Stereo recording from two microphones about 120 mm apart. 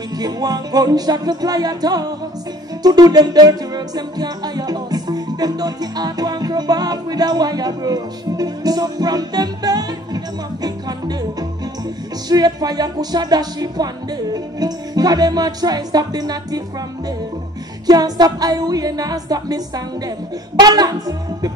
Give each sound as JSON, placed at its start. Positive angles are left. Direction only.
{"t": 0.2, "sound": "music", "side_deg": -35}
{"t": 12.3, "sound": "music", "side_deg": -35}
{"t": 17.8, "sound": "music", "side_deg": -35}